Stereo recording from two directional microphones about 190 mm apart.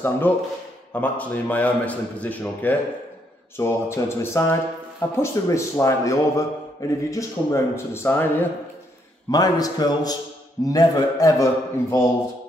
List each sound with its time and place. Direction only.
0.3 s a man's voice: 10° left (ahead or behind)